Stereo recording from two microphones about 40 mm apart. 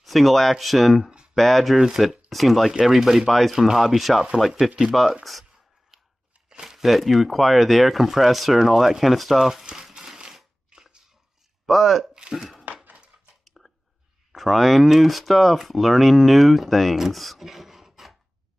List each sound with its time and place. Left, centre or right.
0.0 s speech: centre
3.5 s speech: centre
4.5 s speech: centre
5.2 s speech: centre
6.5 s crumpling: centre
6.9 s speech: centre
9.9 s crushing: centre
10.7 s a sound: centre
11.6 s speech: centre
12.1 s a sound: centre
12.4 s speech: centre
13.4 s a sound: centre
14.3 s speech: centre